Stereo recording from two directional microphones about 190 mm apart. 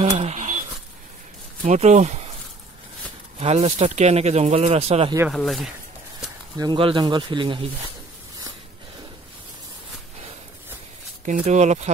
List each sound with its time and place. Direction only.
0.0 s a sound: 35° right (ahead or behind)
1.6 s speech: 40° right (ahead or behind)
3.3 s speech: 35° right (ahead or behind)
5.3 s speech: centre (ahead or behind)
6.5 s speech: 20° right (ahead or behind)
11.4 s speech: 35° right (ahead or behind)